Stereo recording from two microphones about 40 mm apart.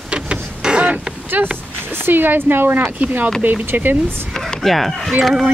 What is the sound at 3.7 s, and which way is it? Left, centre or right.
Speech, right.